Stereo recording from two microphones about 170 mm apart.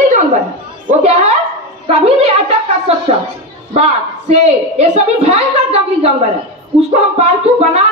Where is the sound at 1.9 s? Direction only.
35° right (ahead or behind).